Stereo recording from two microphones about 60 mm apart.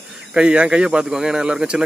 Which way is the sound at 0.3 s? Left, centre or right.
Centre.